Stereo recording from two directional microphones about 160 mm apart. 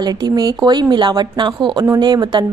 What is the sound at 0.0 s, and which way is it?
A woman's voice, 25° right (ahead or behind).